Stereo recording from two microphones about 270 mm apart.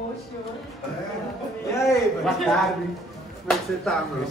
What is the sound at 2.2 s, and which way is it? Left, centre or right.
Speech, centre.